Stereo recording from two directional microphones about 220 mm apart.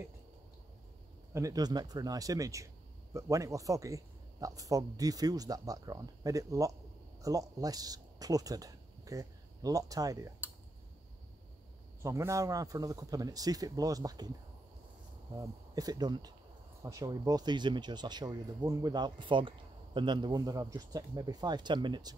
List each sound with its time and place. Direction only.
1.3 s speech: 15° right (ahead or behind)
12.0 s speech: 15° right (ahead or behind)
15.3 s speech: 15° right (ahead or behind)